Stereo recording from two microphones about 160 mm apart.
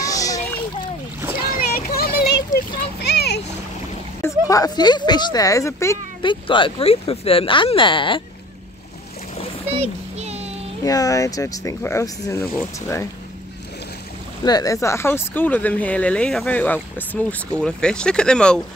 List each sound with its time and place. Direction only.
0.0 s splash: 20° left (ahead or behind)
1.5 s a sound: 70° left (ahead or behind)
3.0 s splash: 90° left
4.2 s speech: 20° left (ahead or behind)
6.2 s speech: 30° left (ahead or behind)
9.7 s a sound: 40° right (ahead or behind)
10.8 s speech: 20° left (ahead or behind)
14.4 s speech: 25° left (ahead or behind); by 18.6 s 5° left (ahead or behind)